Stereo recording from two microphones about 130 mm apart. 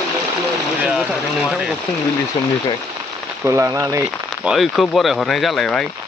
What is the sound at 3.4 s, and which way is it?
Speech, 20° right (ahead or behind).